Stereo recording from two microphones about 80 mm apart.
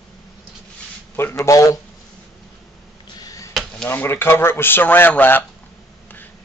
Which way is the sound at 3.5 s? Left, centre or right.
Centre.